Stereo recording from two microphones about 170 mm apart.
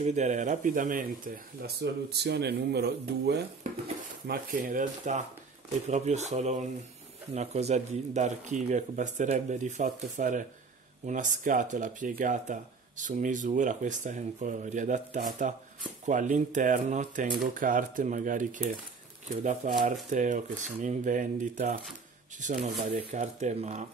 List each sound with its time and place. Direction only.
0.0 s speech: 45° right (ahead or behind); by 3.4 s 75° right (ahead or behind)
4.3 s speech: 55° right (ahead or behind); by 23.9 s 40° right (ahead or behind)